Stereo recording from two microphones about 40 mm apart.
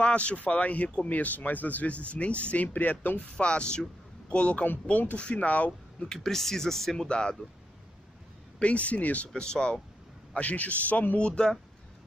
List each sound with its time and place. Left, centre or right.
0.0 s speech: left
3.3 s speech: left
4.9 s speech: left
6.1 s speech: centre
7.1 s speech: left
8.5 s speech: left
9.3 s speech: left
10.3 s speech: left
11.2 s speech: left